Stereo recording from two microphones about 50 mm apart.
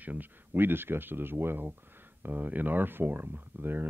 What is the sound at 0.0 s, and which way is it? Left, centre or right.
Speech, right.